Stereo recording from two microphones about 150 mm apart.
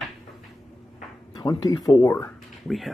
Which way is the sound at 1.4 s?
25° left (ahead or behind).